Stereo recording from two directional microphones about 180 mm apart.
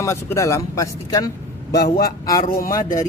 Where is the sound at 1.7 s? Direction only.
65° left (ahead or behind).